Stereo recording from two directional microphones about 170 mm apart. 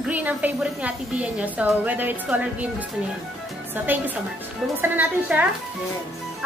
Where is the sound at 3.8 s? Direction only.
10° right (ahead or behind).